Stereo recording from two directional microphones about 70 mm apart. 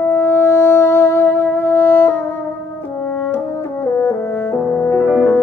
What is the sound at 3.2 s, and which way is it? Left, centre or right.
French horn, left.